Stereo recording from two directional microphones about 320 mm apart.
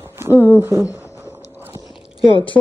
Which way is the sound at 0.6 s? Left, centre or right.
Centre.